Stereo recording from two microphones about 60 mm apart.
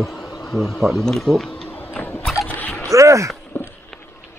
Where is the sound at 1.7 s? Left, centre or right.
Left.